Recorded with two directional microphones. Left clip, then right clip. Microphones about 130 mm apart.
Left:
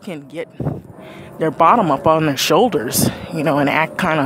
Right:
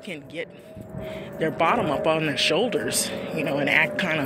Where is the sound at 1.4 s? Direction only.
35° left (ahead or behind).